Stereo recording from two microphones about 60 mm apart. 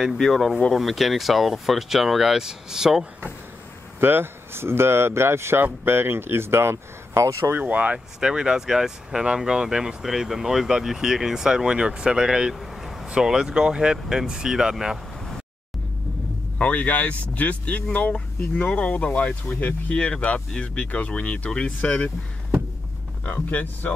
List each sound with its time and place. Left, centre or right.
0.0 s speech: centre
4.0 s speech: right
7.5 s speech: right
8.2 s speech: centre
12.5 s vehicle: centre
13.0 s speech: centre
16.5 s speech: left
23.2 s speech: left